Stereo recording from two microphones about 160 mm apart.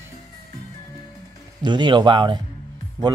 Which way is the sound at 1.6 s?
30° right (ahead or behind).